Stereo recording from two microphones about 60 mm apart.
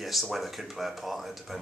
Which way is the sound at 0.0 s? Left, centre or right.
Centre.